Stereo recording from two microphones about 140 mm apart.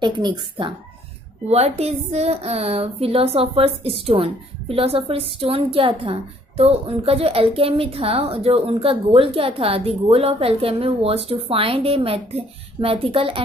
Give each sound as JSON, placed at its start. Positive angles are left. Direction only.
{"t": 0.0, "sound": "speech", "side_deg": -35}
{"t": 1.5, "sound": "a woman's voice", "side_deg": -50}